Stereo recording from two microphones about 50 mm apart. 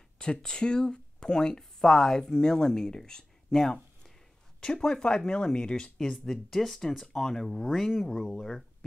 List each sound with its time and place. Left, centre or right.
0.2 s speech: centre
6.1 s speech: centre
8.1 s speech: centre